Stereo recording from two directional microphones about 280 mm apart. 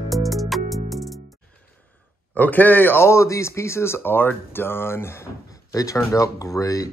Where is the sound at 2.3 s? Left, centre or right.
Centre.